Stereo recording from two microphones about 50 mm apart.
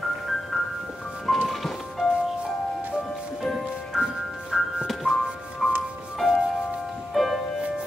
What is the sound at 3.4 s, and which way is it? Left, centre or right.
Music, centre.